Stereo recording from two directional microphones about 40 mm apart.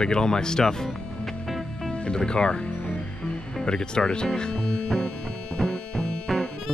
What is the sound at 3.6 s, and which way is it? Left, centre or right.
Speech, centre.